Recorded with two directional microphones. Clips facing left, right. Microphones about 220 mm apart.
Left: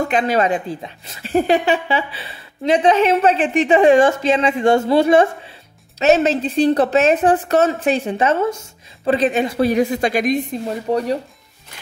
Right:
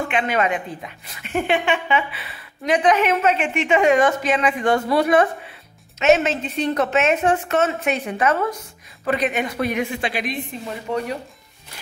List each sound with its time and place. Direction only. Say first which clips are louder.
0.0 s a woman's voice: left 4 dB; 35° left (ahead or behind)